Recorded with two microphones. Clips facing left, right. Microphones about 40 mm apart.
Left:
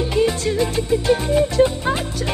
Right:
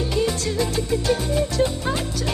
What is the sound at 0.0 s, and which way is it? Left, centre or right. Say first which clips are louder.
Music: left 4 dB; left.